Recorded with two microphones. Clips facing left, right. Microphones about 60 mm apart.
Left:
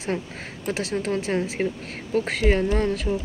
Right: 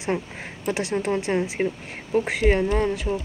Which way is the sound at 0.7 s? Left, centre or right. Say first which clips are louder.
Right 2 dB; centre.